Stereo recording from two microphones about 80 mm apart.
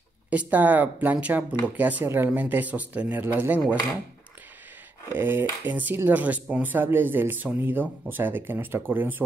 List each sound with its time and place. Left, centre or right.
0.3 s cutlery: centre
5.1 s cutlery: right